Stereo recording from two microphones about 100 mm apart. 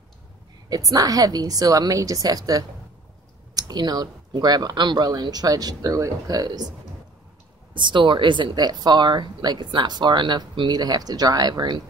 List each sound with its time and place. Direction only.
0.7 s speech: 35° right (ahead or behind)
7.7 s speech: 55° right (ahead or behind)